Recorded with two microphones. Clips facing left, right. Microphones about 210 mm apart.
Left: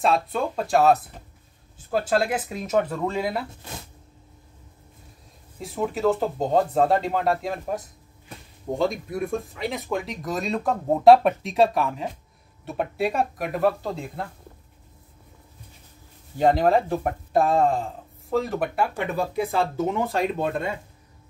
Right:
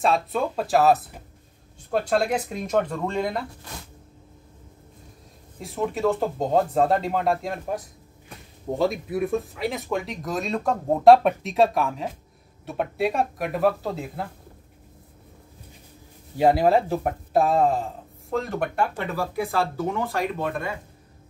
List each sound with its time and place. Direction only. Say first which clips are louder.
0.0 s speech: even; centre (ahead or behind)
5.6 s speech: even; centre (ahead or behind)
16.3 s speech: right 1 dB; 10° right (ahead or behind)
18.9 s speech: left 2 dB; 20° left (ahead or behind)